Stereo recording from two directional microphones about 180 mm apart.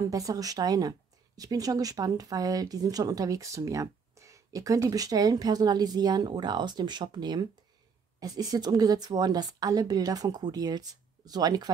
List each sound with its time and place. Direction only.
0.0 s speech: 20° right (ahead or behind)